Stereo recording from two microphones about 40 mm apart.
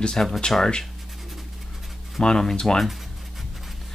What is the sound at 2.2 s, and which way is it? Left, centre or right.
Speech, centre.